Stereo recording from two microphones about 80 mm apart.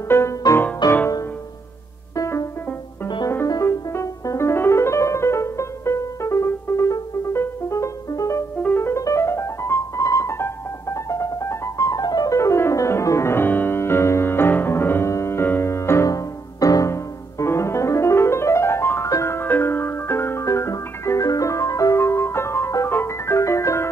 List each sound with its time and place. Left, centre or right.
0.5 s music: left
0.8 s music: left
2.1 s music: left
3.6 s piano: left
8.6 s music: left
12.4 s music: left
16.1 s music: left